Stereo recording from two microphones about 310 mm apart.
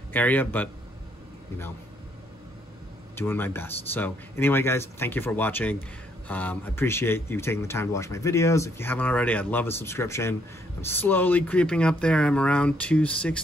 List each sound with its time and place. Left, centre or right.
0.1 s speech: centre
3.2 s speech: centre